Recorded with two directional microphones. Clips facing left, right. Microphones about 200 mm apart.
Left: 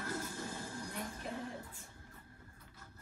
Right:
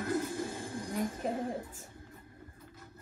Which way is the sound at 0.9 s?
40° right (ahead or behind).